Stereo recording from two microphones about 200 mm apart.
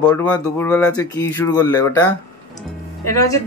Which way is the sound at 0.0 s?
5° left (ahead or behind).